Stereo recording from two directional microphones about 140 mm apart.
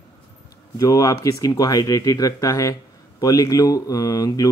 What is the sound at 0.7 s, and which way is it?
Speech, 25° left (ahead or behind).